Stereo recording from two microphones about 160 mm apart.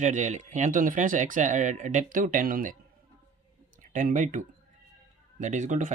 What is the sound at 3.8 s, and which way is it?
Speech, 55° right (ahead or behind).